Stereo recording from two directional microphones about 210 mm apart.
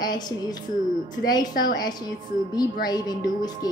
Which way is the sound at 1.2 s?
20° left (ahead or behind).